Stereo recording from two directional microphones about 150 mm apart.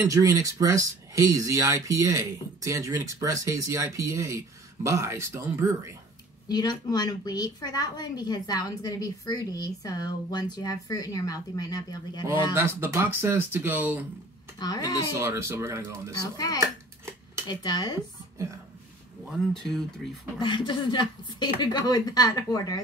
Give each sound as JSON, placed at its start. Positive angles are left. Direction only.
{"t": 0.1, "sound": "speech", "side_deg": -20}
{"t": 6.5, "sound": "a woman's voice", "side_deg": 25}
{"t": 12.5, "sound": "speech", "side_deg": -15}
{"t": 14.6, "sound": "a woman's voice", "side_deg": 25}
{"t": 15.1, "sound": "speech", "side_deg": -20}
{"t": 17.5, "sound": "a woman's voice", "side_deg": 30}
{"t": 19.3, "sound": "speech", "side_deg": 5}
{"t": 20.3, "sound": "a woman's voice", "side_deg": 30}